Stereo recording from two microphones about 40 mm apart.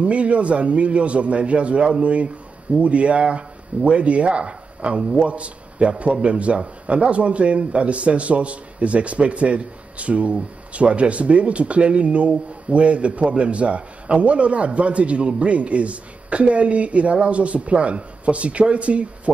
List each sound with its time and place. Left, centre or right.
0.0 s a man's voice: right